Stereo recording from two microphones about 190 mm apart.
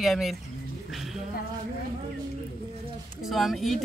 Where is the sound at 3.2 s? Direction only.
Centre (ahead or behind).